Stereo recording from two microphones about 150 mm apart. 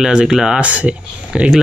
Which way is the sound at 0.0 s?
5° right (ahead or behind).